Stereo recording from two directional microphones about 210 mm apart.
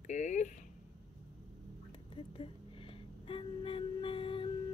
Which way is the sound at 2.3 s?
25° left (ahead or behind).